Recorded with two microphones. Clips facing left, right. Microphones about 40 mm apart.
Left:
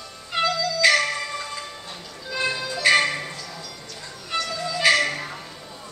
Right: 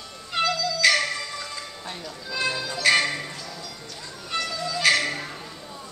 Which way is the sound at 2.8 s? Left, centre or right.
Centre.